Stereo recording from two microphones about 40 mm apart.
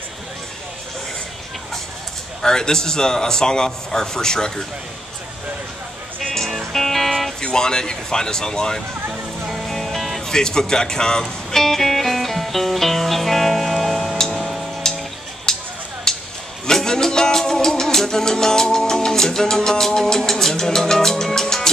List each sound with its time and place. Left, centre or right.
2.4 s a man's voice: centre
6.2 s music: centre
7.3 s a man's voice: centre
9.5 s music: centre
14.8 s music: centre
15.5 s a sound: centre
16.6 s music: centre